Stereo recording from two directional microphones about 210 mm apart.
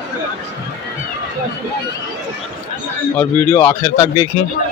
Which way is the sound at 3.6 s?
20° left (ahead or behind).